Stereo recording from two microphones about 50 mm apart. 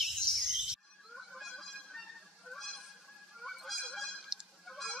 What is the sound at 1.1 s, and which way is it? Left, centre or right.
Honk, centre.